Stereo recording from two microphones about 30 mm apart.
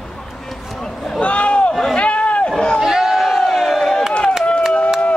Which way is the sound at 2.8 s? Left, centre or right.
Centre.